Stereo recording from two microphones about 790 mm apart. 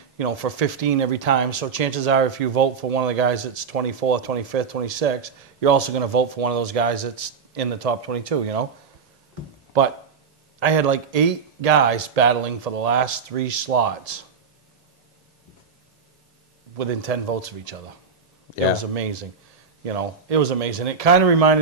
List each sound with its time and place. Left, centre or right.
0.2 s speech: right
9.7 s speech: right
16.7 s speech: right
18.8 s speech: right